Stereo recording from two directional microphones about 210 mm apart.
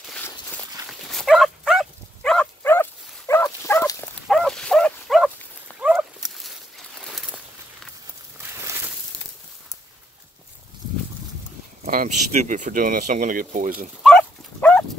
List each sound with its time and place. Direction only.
0.8 s dog: centre (ahead or behind)
4.3 s dog: centre (ahead or behind)
5.8 s a sound: 5° right (ahead or behind)
8.4 s a sound: 10° right (ahead or behind)
11.8 s speech: 35° right (ahead or behind)
14.0 s dog: 5° left (ahead or behind)